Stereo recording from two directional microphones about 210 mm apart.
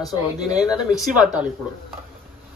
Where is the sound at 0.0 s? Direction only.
20° left (ahead or behind).